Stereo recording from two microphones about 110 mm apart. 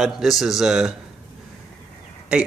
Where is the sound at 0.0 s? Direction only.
Centre (ahead or behind).